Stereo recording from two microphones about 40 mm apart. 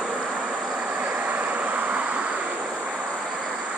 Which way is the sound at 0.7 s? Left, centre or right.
Right.